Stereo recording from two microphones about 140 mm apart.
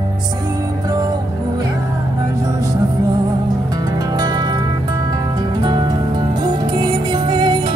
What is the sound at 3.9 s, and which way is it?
Music, 30° right (ahead or behind).